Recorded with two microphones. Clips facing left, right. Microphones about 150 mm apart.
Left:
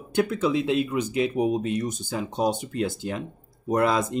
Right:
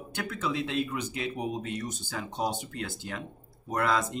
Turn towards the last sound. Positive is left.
turn(degrees=20)  # may be behind; listen again after turning